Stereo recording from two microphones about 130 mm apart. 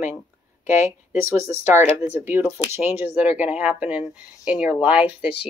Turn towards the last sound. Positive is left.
turn(degrees=-10)  # may be behind; listen again after turning